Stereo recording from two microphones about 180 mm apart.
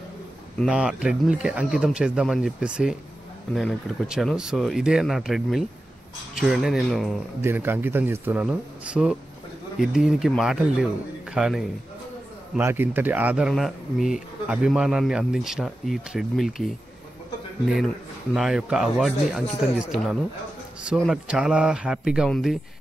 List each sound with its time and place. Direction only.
0.7 s speech: 5° right (ahead or behind)
7.4 s a man's voice: 10° right (ahead or behind)
12.5 s a man's voice: 10° right (ahead or behind)
19.4 s speech: 35° left (ahead or behind)
21.0 s speech: 5° right (ahead or behind)